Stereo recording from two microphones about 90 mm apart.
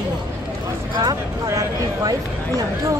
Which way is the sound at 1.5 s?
40° right (ahead or behind).